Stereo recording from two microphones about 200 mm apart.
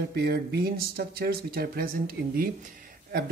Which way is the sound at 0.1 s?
55° right (ahead or behind).